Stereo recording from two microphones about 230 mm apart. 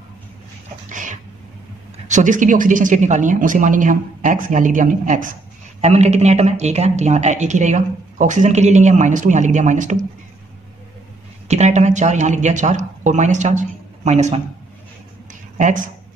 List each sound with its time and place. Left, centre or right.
0.8 s cat: right
2.0 s a man's voice: right
11.4 s a man's voice: right
15.5 s speech: right